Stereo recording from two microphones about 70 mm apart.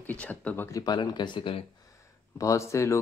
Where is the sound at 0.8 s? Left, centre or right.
Left.